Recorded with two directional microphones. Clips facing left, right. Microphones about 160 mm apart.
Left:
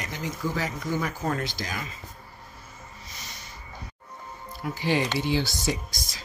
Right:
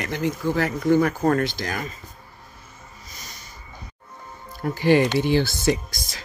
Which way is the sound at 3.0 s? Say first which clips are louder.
Right 2 dB; 45° right (ahead or behind).